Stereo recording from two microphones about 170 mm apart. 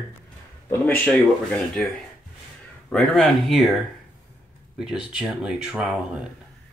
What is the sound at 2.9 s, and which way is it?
Speech, 5° left (ahead or behind).